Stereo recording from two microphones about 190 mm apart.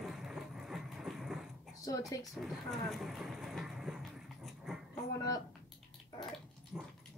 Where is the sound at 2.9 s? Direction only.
Centre (ahead or behind).